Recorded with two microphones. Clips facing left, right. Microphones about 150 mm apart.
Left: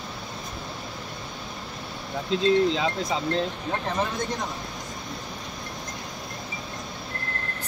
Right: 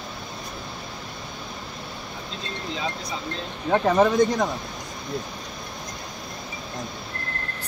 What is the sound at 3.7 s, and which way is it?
Speech, 65° right (ahead or behind).